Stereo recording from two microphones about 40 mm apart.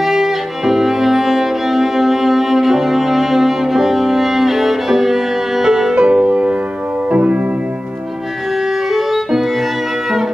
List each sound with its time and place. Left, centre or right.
0.0 s music: centre
7.1 s music: right
8.9 s music: centre